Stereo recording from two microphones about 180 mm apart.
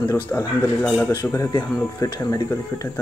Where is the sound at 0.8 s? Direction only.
5° left (ahead or behind).